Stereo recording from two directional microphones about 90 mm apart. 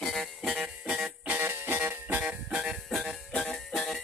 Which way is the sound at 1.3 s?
25° right (ahead or behind).